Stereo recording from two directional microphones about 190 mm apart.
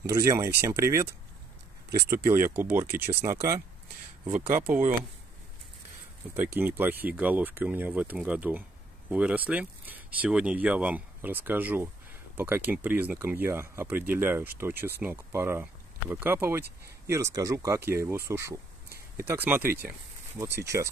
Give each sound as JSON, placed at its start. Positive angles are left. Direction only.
{"t": 0.1, "sound": "speech", "side_deg": -15}
{"t": 2.1, "sound": "speech", "side_deg": -10}
{"t": 6.3, "sound": "speech", "side_deg": -10}
{"t": 18.9, "sound": "a sound", "side_deg": -50}
{"t": 19.2, "sound": "speech", "side_deg": -10}